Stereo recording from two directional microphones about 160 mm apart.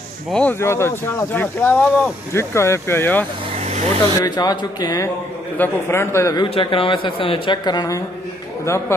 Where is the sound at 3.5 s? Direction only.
45° right (ahead or behind).